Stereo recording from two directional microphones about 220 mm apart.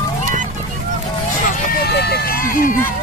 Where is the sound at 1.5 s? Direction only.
45° left (ahead or behind).